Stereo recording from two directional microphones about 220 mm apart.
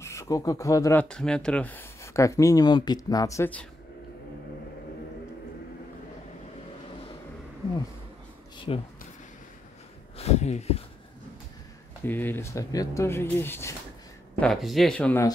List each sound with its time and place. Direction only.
0.0 s speech: 15° left (ahead or behind)
1.0 s speech: 5° left (ahead or behind)
8.5 s speech: 25° left (ahead or behind)
10.1 s speech: 30° left (ahead or behind)
12.0 s speech: 10° left (ahead or behind)
14.4 s speech: centre (ahead or behind)